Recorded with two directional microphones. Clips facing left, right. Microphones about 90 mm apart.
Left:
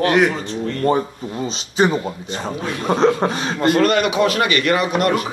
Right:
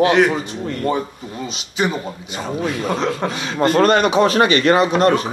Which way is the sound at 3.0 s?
25° left (ahead or behind).